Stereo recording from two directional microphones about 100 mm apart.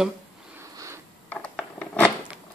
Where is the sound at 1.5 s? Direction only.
5° left (ahead or behind).